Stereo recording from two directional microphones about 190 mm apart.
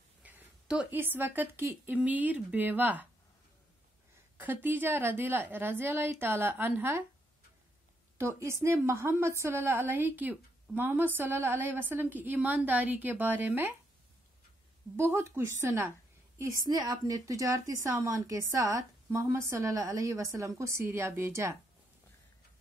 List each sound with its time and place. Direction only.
0.2 s a woman's voice: 10° right (ahead or behind)
4.4 s a woman's voice: 10° right (ahead or behind)
8.2 s a woman's voice: 15° right (ahead or behind)
15.0 s a woman's voice: 15° right (ahead or behind)